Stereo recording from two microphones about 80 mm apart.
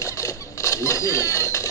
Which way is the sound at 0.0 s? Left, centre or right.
Left.